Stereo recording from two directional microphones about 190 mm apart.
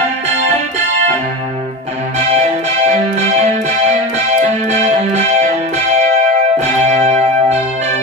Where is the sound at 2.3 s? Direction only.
35° right (ahead or behind).